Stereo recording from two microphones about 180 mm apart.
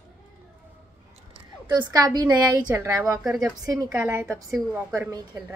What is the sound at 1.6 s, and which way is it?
A woman's voice, 20° right (ahead or behind).